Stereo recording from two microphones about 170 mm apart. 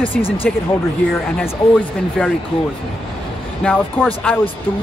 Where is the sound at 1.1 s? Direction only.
Centre (ahead or behind).